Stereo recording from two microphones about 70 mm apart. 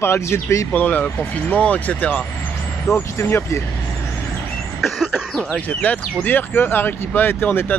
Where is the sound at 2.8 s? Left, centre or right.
Left.